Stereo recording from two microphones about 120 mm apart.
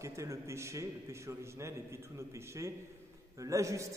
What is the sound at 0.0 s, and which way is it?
A man's voice, 25° right (ahead or behind).